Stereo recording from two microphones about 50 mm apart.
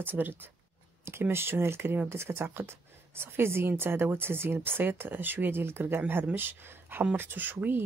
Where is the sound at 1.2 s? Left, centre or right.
Right.